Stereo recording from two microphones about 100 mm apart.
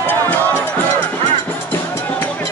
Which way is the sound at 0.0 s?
15° left (ahead or behind).